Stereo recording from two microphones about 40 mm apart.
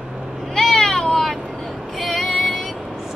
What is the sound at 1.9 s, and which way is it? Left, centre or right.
Female singing, centre.